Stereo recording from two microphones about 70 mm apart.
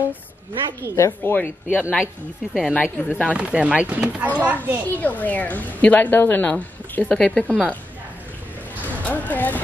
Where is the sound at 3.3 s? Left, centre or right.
Centre.